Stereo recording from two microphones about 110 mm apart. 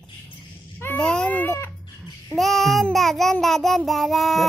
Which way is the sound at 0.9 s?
10° left (ahead or behind).